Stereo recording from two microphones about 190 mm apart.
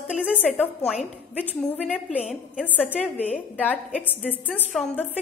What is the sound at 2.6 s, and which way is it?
A woman's voice, 10° left (ahead or behind).